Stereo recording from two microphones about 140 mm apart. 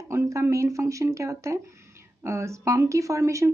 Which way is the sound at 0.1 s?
20° right (ahead or behind).